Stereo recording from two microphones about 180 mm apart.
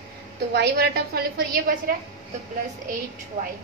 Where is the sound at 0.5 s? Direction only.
65° right (ahead or behind).